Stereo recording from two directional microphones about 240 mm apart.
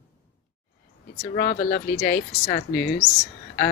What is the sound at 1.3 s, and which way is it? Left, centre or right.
Speech, left.